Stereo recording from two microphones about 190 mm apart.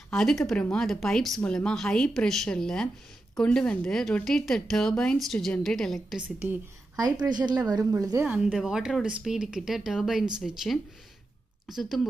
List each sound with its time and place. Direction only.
0.1 s speech: 5° left (ahead or behind)
7.2 s speech: 25° right (ahead or behind)
8.3 s speech: 5° right (ahead or behind)